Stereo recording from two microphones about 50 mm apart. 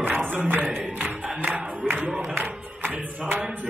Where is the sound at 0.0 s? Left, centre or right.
Right.